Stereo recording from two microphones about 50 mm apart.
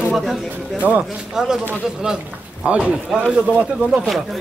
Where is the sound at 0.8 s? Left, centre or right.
Right.